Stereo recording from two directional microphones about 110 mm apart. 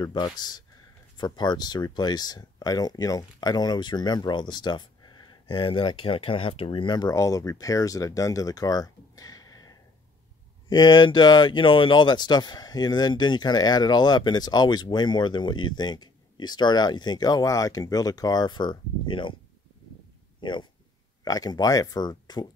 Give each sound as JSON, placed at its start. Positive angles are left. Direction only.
{"t": 0.0, "sound": "speech", "side_deg": 40}
{"t": 20.3, "sound": "speech", "side_deg": 45}